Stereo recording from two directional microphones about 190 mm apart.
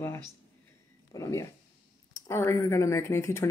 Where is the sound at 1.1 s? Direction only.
15° left (ahead or behind).